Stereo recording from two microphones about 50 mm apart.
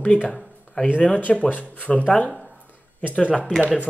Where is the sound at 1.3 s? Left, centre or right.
Left.